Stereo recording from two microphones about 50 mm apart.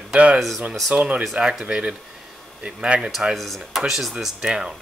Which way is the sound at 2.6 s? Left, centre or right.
Right.